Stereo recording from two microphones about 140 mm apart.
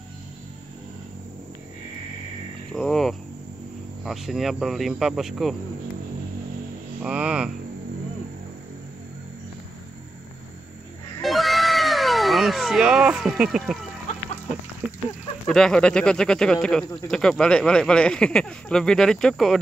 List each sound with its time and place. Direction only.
2.7 s hum: 5° left (ahead or behind)
4.0 s speech: centre (ahead or behind)
7.0 s hum: 5° right (ahead or behind)
11.2 s cat: centre (ahead or behind)
15.4 s speech: 5° left (ahead or behind)